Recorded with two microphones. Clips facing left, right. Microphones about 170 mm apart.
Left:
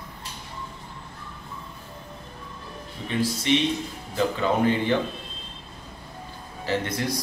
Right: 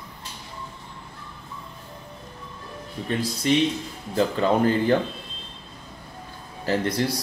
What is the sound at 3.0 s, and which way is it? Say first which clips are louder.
Music: right 7 dB; 40° right (ahead or behind).